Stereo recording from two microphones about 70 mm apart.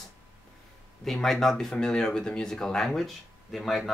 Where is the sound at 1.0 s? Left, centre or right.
Centre.